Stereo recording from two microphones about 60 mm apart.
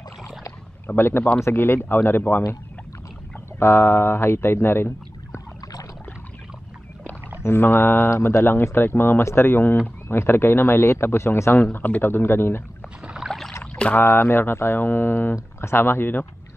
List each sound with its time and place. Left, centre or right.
0.8 s speech: left
3.5 s speech: left
7.4 s speech: left
11.6 s speech: left
13.0 s rowboat: centre
13.9 s speech: left